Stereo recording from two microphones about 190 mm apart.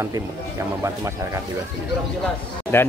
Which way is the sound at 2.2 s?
10° left (ahead or behind).